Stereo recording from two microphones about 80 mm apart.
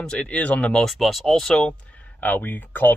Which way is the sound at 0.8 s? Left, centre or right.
Centre.